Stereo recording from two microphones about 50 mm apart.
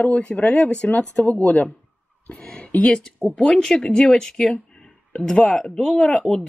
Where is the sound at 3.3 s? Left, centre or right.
Centre.